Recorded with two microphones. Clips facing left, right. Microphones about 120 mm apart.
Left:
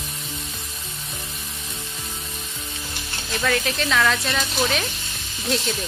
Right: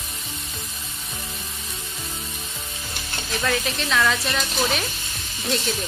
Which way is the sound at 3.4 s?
Centre (ahead or behind).